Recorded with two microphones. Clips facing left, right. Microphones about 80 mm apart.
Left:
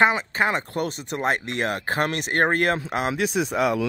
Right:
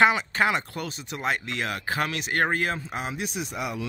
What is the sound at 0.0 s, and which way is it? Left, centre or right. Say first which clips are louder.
Speech: left 1 dB; left.